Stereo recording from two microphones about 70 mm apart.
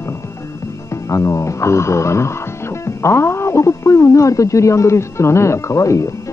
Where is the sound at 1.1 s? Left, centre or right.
Left.